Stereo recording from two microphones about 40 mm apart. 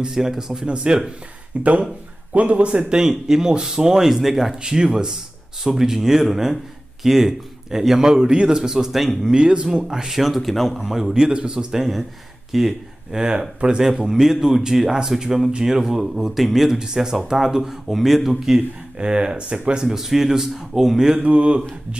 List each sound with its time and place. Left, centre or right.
0.1 s speech: centre
1.5 s speech: right; by 4.6 s centre
4.6 s speech: centre
8.1 s speech: right; by 9.3 s centre
9.3 s speech: right; by 10.8 s centre
10.8 s speech: centre
11.3 s speech: right
12.4 s speech: centre
13.2 s speech: right
13.7 s speech: centre
16.7 s speech: centre
18.9 s speech: right
19.8 s speech: centre
21.2 s speech: right